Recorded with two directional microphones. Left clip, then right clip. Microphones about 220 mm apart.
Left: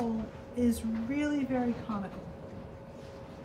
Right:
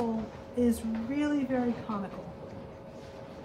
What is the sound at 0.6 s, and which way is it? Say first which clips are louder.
Speech: right 2 dB; 15° right (ahead or behind).